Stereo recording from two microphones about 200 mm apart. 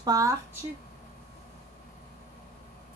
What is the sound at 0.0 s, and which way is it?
Speech, 15° right (ahead or behind).